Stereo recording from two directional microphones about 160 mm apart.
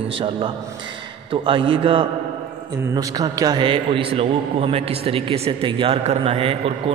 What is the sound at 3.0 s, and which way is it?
A man's voice, 25° right (ahead or behind).